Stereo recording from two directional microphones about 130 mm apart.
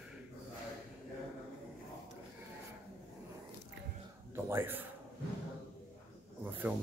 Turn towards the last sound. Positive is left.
turn(degrees=-15)  # may be behind; listen again after turning